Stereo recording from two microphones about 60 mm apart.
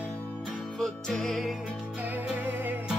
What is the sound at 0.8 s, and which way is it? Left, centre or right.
Music, centre.